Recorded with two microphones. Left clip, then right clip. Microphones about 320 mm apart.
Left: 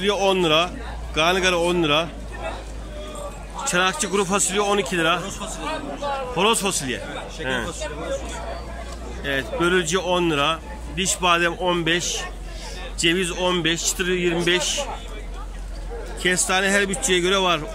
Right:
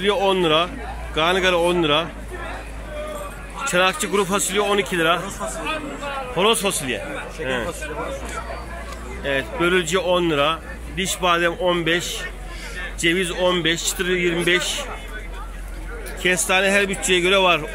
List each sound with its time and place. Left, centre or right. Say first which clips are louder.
0.0 s speech: right 1 dB; centre
3.7 s speech: right 2 dB; centre
9.2 s speech: right 1 dB; centre
16.4 s speech: right 3 dB; centre